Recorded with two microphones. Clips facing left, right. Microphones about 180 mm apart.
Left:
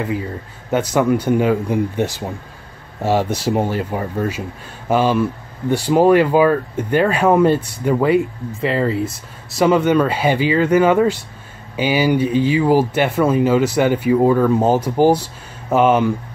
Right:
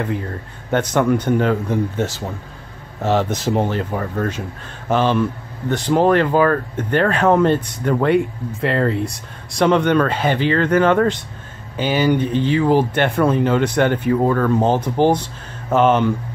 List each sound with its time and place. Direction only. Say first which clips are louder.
0.0 s speech: left 1 dB; 5° left (ahead or behind)